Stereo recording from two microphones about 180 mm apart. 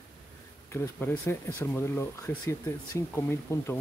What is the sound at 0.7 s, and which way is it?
Speech, 10° left (ahead or behind).